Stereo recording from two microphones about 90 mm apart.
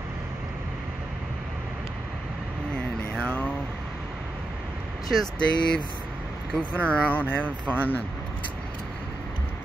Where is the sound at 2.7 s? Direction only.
10° left (ahead or behind).